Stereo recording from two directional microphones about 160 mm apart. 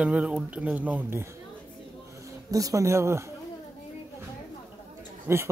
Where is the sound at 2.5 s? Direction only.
20° right (ahead or behind).